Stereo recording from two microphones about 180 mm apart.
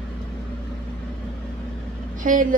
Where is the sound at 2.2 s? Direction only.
50° right (ahead or behind).